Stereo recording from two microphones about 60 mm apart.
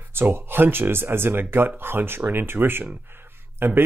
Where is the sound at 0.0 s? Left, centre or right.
Right.